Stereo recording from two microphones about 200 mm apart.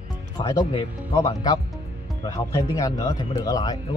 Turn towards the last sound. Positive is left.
turn(degrees=20)  # may be behind; listen again after turning